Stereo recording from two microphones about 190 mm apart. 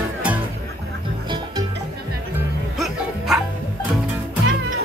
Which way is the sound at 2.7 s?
Centre (ahead or behind).